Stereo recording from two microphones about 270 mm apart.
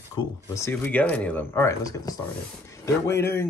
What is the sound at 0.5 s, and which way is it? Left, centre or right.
Speech, centre.